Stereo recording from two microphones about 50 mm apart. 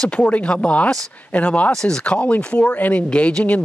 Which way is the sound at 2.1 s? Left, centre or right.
Left.